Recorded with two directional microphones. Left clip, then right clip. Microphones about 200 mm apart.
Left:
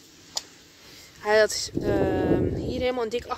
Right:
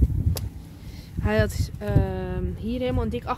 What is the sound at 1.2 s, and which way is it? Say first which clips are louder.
Speech: left 5 dB; 25° left (ahead or behind).